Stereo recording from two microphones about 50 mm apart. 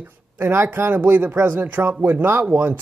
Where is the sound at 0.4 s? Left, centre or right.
Right.